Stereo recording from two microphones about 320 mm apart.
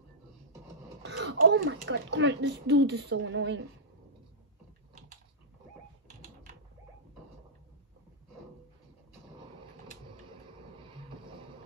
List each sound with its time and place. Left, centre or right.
1.0 s speech: right
10.8 s vehicle: centre